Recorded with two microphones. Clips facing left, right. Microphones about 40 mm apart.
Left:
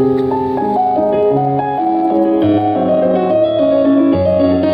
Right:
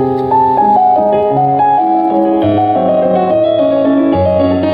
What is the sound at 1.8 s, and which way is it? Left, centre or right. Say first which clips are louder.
Music: right 3 dB; centre.